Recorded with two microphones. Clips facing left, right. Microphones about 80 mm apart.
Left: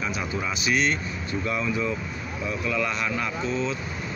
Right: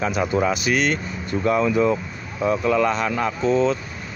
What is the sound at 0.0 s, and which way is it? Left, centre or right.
Speech, right.